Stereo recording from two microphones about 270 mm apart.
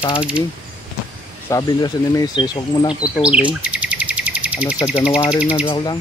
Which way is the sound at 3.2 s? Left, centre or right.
Centre.